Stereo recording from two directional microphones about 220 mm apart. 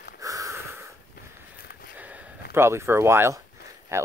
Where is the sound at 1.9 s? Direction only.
10° right (ahead or behind).